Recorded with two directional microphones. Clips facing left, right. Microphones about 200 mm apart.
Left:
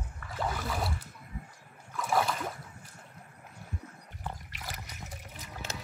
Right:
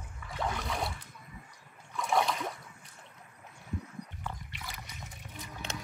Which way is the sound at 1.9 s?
Centre (ahead or behind).